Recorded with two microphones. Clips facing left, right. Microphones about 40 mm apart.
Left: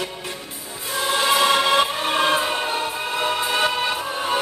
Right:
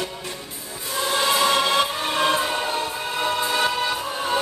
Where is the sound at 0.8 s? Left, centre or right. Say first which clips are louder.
Left 2 dB; centre.